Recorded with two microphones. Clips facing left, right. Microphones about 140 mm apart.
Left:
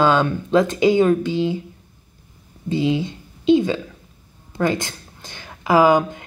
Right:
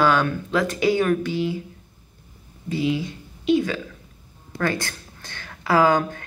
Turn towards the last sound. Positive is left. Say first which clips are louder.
# left 4 dB
turn(degrees=15)  # may be behind; listen again after turning